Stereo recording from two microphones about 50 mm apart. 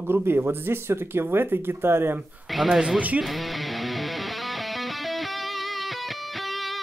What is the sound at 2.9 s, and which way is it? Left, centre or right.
Speech, right.